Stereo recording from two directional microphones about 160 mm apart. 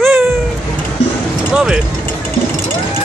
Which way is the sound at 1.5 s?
5° right (ahead or behind).